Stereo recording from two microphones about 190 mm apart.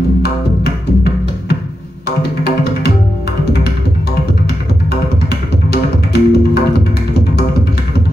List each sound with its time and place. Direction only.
2.4 s music: 60° left (ahead or behind)
5.3 s music: 60° left (ahead or behind)